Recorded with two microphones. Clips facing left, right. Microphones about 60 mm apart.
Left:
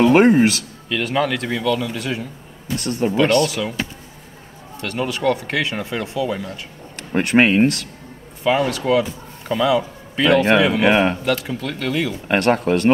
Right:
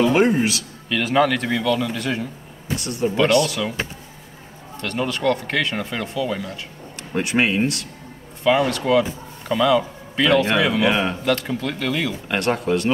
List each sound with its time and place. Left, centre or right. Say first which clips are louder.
0.0 s speech: left 4 dB; left
0.8 s speech: right 2 dB; centre
2.8 s speech: left 2 dB; left
3.4 s speech: left 1 dB; centre
4.7 s speech: left 1 dB; centre
7.0 s speech: left 5 dB; left
8.5 s speech: even; centre
10.7 s speech: left 4 dB; left
11.2 s speech: even; centre
12.3 s speech: left 5 dB; left